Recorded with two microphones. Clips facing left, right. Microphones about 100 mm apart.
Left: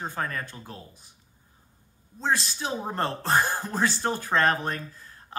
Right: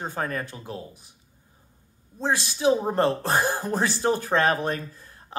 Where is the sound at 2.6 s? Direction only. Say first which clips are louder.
Right 8 dB; 15° right (ahead or behind).